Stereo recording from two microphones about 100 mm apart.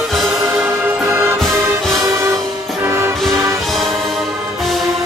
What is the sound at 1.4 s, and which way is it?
Music, 5° left (ahead or behind).